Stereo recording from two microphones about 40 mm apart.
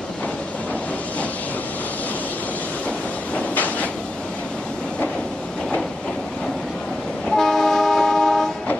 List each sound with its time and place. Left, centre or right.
3.5 s cupboard open or close: left
7.2 s train: centre